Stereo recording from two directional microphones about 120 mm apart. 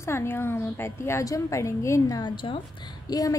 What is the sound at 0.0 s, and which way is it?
A woman's voice, 20° left (ahead or behind).